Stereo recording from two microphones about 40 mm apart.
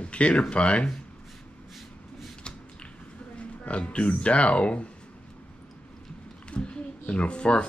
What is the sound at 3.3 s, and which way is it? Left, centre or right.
Speech, left.